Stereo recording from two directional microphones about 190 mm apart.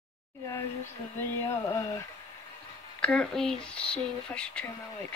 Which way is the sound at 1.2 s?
15° left (ahead or behind).